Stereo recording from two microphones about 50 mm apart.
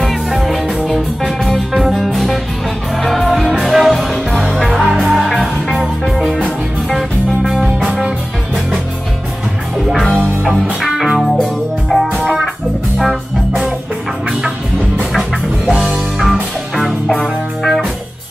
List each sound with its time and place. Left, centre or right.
0.0 s music: centre
4.8 s music: right
5.1 s music: centre
10.1 s music: centre
10.8 s music: centre
15.7 s music: centre
16.2 s music: centre